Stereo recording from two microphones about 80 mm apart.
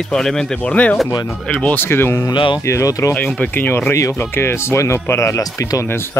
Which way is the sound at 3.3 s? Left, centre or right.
Left.